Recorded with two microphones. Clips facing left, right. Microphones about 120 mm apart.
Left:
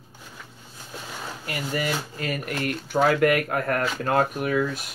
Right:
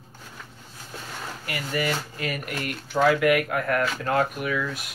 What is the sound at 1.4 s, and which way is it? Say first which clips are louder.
Speech: even; 25° left (ahead or behind).